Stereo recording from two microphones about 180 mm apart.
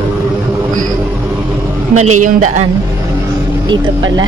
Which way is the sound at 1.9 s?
45° right (ahead or behind).